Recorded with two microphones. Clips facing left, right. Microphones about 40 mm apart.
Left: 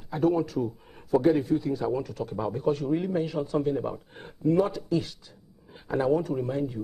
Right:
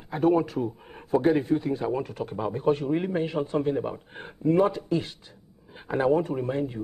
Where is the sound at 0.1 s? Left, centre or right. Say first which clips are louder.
Right 2 dB; right.